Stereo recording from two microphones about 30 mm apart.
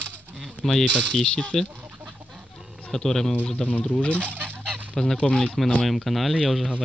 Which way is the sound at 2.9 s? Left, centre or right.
Centre.